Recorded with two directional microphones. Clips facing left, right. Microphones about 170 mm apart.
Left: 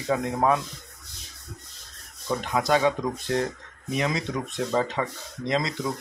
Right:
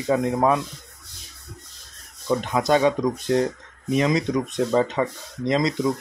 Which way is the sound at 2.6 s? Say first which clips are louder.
Right 3 dB; 20° right (ahead or behind).